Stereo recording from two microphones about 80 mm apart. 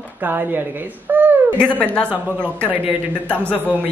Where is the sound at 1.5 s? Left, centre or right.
Centre.